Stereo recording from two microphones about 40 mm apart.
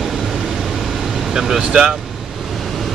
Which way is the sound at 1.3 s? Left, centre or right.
Centre.